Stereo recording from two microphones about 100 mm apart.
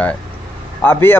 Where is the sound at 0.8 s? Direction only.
20° left (ahead or behind).